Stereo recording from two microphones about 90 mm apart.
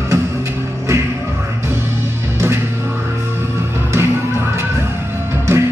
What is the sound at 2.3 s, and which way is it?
Music, 30° right (ahead or behind).